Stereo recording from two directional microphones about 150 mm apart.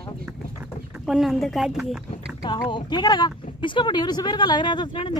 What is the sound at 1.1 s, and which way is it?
Speech, centre (ahead or behind).